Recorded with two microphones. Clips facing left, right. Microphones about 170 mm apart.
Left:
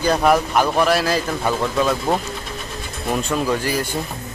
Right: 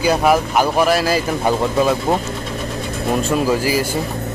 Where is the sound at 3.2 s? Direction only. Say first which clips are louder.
Right 4 dB; 5° right (ahead or behind).